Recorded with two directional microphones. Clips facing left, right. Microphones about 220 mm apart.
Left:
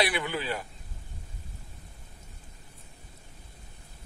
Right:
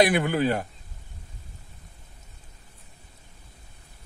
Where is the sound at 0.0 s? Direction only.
45° right (ahead or behind).